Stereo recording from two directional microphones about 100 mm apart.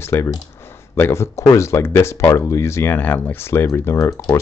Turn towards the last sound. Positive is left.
turn(degrees=40)  # may be behind; listen again after turning